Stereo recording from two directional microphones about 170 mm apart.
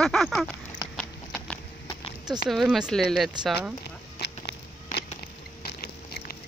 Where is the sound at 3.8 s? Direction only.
75° left (ahead or behind).